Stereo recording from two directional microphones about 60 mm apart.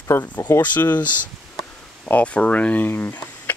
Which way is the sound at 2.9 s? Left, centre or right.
Left.